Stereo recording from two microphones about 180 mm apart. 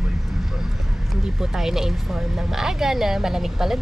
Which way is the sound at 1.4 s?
Centre (ahead or behind).